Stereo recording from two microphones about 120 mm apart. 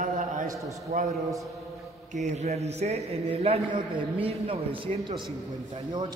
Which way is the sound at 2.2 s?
65° right (ahead or behind).